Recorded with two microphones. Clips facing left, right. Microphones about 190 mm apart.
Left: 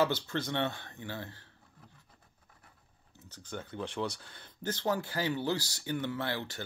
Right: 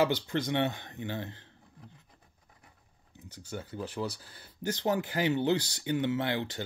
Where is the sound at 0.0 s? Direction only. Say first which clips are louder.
Right 2 dB; 15° right (ahead or behind).